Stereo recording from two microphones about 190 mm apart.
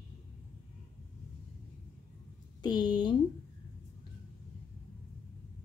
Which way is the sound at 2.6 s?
20° left (ahead or behind).